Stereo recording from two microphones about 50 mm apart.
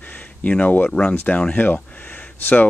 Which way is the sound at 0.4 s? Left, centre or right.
Left.